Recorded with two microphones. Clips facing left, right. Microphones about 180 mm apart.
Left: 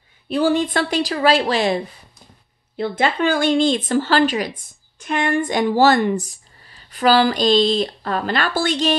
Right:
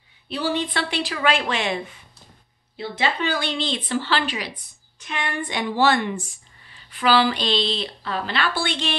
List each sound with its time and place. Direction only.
0.3 s a woman's voice: 45° left (ahead or behind)
2.8 s speech: 50° left (ahead or behind)